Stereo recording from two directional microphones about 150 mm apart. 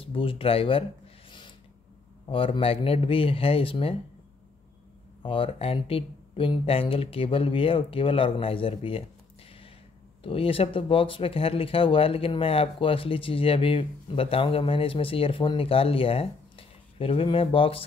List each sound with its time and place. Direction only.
0.0 s speech: 35° left (ahead or behind)
2.2 s speech: 35° left (ahead or behind)
5.2 s speech: 35° left (ahead or behind)
10.2 s speech: 40° left (ahead or behind)